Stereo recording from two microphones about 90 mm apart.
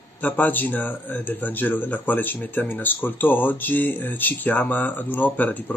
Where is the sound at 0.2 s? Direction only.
20° left (ahead or behind).